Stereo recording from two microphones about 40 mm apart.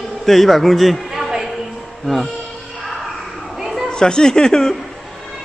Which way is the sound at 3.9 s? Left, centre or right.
Centre.